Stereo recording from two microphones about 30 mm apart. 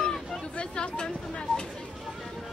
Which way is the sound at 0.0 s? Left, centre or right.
Centre.